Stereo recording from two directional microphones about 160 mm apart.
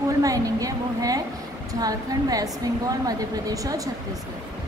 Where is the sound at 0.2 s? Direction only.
20° right (ahead or behind).